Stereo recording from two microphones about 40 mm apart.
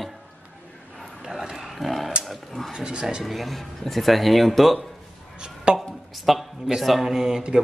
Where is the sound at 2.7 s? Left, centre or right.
Centre.